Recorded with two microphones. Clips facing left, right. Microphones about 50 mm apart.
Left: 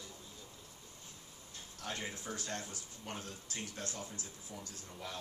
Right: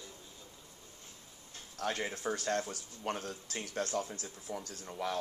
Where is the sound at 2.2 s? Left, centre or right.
Right.